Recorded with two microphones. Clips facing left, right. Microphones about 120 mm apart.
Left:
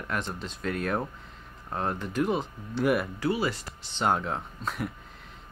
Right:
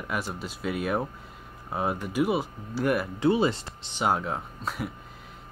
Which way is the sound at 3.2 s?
25° right (ahead or behind).